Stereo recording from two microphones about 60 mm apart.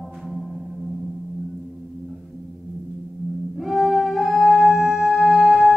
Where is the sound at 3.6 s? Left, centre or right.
Centre.